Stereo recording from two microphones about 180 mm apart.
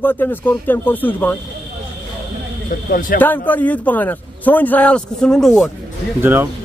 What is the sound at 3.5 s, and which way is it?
A man's voice, 10° left (ahead or behind).